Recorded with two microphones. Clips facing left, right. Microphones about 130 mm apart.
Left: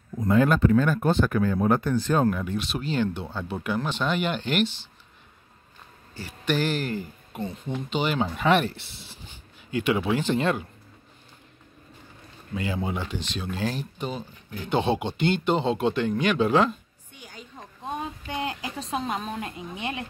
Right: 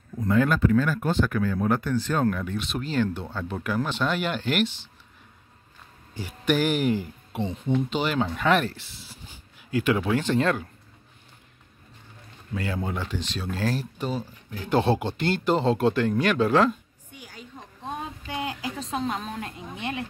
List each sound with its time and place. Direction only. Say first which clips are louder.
0.2 s speech: left 2 dB; 20° left (ahead or behind)
2.7 s speech: right 2 dB; centre (ahead or behind)
6.1 s speech: right 2 dB; 10° right (ahead or behind)
7.7 s speech: right 2 dB; centre (ahead or behind)
9.0 s a sound: even; centre (ahead or behind)
9.8 s speech: even; 5° left (ahead or behind)
12.5 s speech: left 1 dB; 5° left (ahead or behind)